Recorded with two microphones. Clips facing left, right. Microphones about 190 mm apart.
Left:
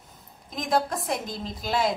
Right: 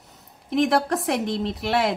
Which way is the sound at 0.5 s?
70° right (ahead or behind).